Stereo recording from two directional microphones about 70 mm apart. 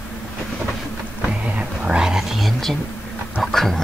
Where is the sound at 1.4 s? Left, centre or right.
Centre.